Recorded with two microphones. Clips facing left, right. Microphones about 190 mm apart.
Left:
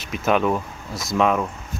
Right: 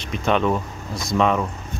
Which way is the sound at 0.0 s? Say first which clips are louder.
Even; 5° left (ahead or behind).